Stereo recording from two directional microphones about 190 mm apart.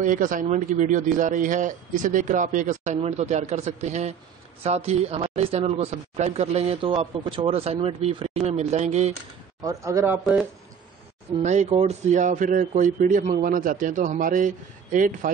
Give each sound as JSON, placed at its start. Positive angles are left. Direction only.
{"t": 0.0, "sound": "a man's voice", "side_deg": -45}
{"t": 9.6, "sound": "speech", "side_deg": -15}
{"t": 11.4, "sound": "a man's voice", "side_deg": -35}